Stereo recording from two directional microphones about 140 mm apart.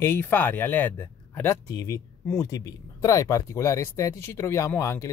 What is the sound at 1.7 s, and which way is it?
Speech, 25° left (ahead or behind).